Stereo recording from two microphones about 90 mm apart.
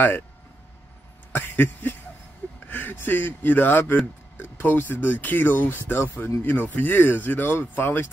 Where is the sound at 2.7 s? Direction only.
20° left (ahead or behind).